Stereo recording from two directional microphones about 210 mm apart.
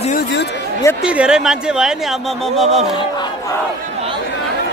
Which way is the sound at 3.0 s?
20° left (ahead or behind).